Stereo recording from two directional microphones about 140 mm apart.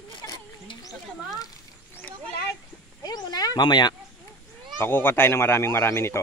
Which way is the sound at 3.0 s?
30° left (ahead or behind).